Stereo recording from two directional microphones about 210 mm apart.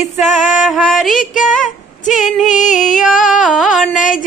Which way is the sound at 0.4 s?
Centre (ahead or behind).